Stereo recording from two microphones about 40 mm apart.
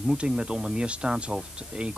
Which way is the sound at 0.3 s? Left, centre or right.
Centre.